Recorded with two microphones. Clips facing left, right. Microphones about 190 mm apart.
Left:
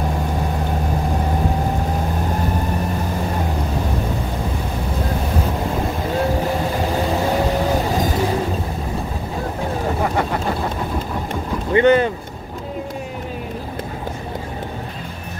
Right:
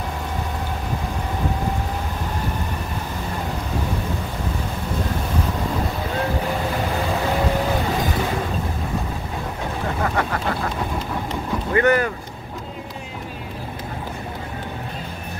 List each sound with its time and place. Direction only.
10.0 s vehicle: 20° left (ahead or behind)
11.7 s boat: 25° left (ahead or behind)